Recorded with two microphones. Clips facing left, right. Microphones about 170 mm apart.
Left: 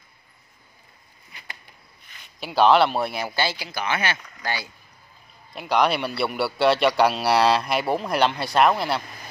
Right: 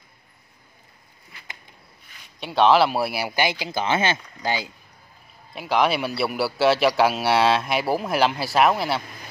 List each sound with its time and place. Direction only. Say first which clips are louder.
2.4 s speech: even; centre (ahead or behind); by 4.6 s 20° right (ahead or behind)
5.5 s a man's voice: even; centre (ahead or behind)